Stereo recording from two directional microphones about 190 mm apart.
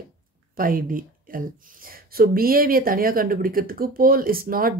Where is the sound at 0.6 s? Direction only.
45° right (ahead or behind).